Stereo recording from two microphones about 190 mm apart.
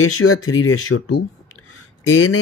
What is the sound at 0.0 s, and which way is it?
Speech, 90° left.